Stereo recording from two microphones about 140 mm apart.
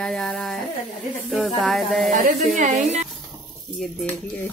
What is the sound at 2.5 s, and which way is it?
Speech, 60° right (ahead or behind).